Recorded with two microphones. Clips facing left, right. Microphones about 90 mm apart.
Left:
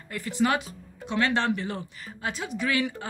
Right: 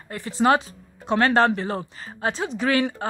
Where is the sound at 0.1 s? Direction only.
30° right (ahead or behind).